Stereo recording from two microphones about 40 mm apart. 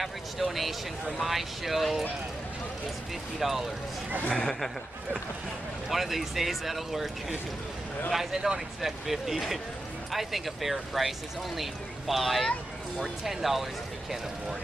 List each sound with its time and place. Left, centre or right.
0.0 s speech: centre
3.3 s speech: centre
4.3 s speech: centre
5.9 s speech: centre
8.3 s speech: centre
8.8 s speech: centre